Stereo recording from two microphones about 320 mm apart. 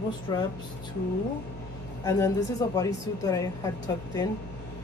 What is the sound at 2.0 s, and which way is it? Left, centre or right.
A man's voice, centre.